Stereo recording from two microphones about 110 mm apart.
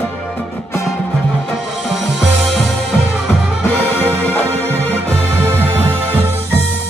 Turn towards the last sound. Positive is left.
turn(degrees=-20)  # may be behind; listen again after turning